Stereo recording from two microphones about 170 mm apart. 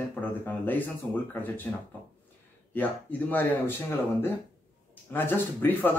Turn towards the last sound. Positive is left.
turn(degrees=10)  # may be behind; listen again after turning